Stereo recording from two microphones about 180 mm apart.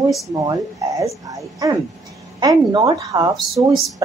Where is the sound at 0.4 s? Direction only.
20° right (ahead or behind).